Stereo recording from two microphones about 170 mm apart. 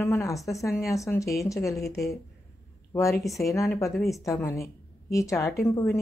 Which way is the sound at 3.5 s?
15° left (ahead or behind).